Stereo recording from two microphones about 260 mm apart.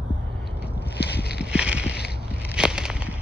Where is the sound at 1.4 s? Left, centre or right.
Centre.